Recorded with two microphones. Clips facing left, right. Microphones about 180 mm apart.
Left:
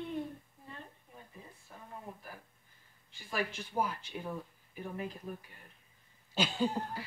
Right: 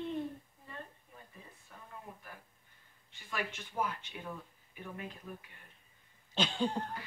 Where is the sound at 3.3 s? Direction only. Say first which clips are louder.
Left 3 dB; 30° left (ahead or behind).